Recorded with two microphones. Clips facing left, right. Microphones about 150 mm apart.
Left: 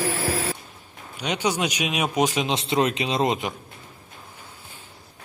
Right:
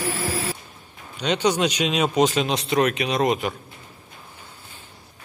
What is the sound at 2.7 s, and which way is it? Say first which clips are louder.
Speech: right 2 dB; 25° left (ahead or behind).